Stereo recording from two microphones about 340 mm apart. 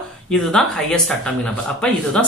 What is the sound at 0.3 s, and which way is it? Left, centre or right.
Speech, centre.